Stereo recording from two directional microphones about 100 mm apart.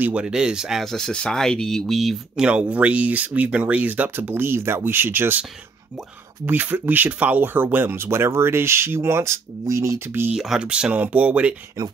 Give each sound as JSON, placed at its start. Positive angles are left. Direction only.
{"t": 0.0, "sound": "speech", "side_deg": -10}
{"t": 6.4, "sound": "speech", "side_deg": -20}
{"t": 10.3, "sound": "speech", "side_deg": -5}